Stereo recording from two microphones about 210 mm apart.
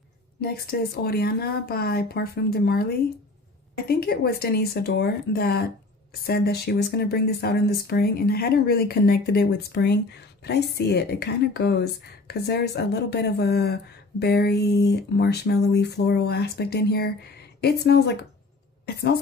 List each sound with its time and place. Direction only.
0.4 s speech: 45° left (ahead or behind)